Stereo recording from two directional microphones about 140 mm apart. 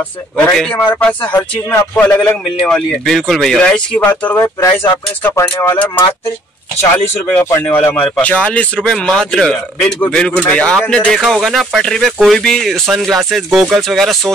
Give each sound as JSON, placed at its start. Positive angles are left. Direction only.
{"t": 0.5, "sound": "a man's voice", "side_deg": 10}
{"t": 7.2, "sound": "a man's voice", "side_deg": 15}